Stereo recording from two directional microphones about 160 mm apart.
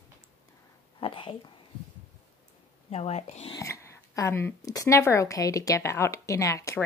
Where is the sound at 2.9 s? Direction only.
40° left (ahead or behind).